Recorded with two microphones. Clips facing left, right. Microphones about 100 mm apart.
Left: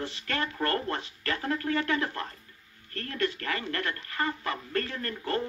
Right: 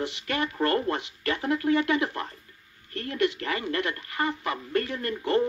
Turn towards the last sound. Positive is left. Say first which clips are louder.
# right 6 dB
turn(degrees=-20)  # may be behind; listen again after turning